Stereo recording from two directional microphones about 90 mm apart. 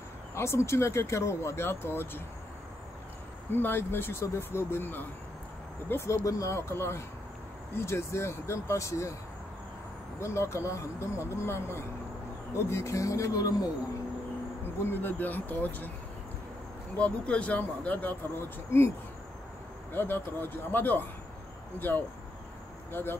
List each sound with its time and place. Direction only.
0.3 s speech: 30° left (ahead or behind)
3.5 s speech: 25° left (ahead or behind)
6.2 s speech: 35° left (ahead or behind)
10.2 s speech: 30° left (ahead or behind)
14.9 s speech: 25° left (ahead or behind)
16.9 s speech: 15° left (ahead or behind)
19.9 s speech: 25° left (ahead or behind)